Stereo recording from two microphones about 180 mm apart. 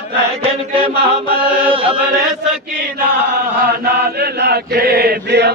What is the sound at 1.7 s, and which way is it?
Chant, 30° right (ahead or behind).